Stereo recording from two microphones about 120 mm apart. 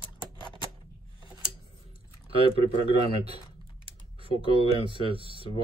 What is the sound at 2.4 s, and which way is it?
Speech, 50° left (ahead or behind).